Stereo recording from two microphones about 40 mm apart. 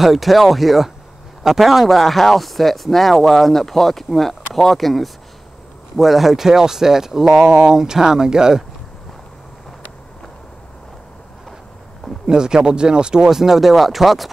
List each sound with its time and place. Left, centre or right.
0.0 s speech: centre
12.3 s speech: centre